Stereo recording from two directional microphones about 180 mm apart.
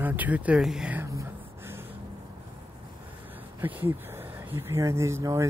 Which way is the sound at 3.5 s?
10° right (ahead or behind).